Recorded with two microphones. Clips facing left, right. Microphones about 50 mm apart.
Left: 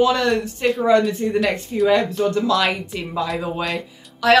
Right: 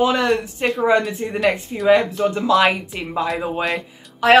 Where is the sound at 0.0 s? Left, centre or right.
Right.